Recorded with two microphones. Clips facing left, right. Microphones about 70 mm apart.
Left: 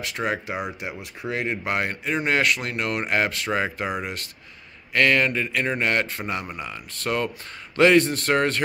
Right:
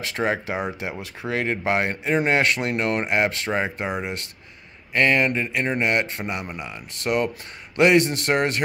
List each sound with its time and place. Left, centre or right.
0.1 s a man's voice: right
1.3 s speech: right
1.7 s a man's voice: right